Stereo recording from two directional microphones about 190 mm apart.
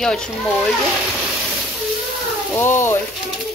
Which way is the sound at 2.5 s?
15° left (ahead or behind).